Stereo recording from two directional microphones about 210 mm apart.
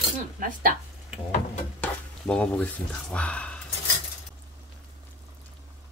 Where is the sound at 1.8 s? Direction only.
5° left (ahead or behind).